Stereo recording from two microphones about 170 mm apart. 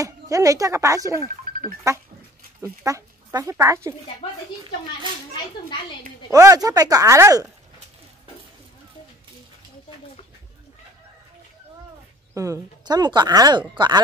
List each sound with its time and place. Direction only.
0.0 s speech: 20° right (ahead or behind)
2.8 s speech: 20° right (ahead or behind)
6.3 s speech: 20° right (ahead or behind)
12.4 s speech: 20° right (ahead or behind)